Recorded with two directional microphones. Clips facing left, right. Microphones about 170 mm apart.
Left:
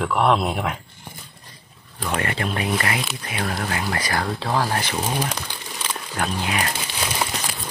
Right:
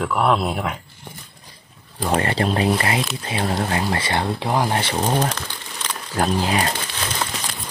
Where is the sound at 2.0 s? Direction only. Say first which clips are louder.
Right 5 dB; 35° right (ahead or behind); by 4.8 s 15° right (ahead or behind).